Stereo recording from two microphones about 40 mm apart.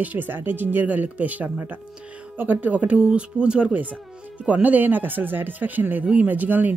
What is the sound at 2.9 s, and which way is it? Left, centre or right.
Speech, right.